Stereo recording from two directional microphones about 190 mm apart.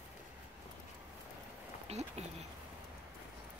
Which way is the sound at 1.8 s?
35° right (ahead or behind).